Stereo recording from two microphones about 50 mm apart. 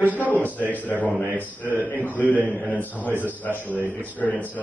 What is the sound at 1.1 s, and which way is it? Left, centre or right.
Speech, right.